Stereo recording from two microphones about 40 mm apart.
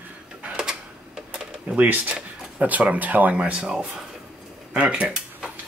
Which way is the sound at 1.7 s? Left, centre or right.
Right.